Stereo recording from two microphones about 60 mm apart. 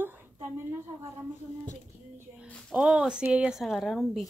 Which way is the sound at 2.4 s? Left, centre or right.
Left.